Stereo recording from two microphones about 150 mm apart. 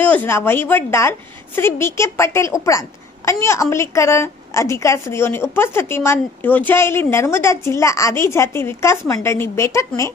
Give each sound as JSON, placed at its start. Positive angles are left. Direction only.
{"t": 0.0, "sound": "a woman's voice", "side_deg": 10}